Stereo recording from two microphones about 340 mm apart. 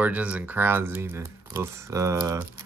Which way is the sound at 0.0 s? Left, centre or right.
Centre.